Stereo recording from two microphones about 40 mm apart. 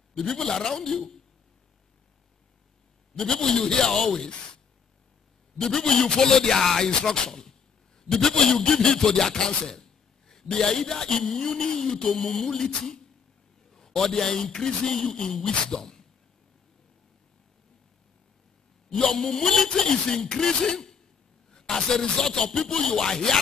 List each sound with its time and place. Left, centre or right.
0.3 s speech: centre
3.2 s speech: centre
5.6 s speech: centre
18.9 s speech: centre
19.7 s speech: centre